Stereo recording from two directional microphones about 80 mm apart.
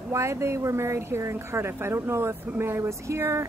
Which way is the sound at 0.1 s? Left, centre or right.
Right.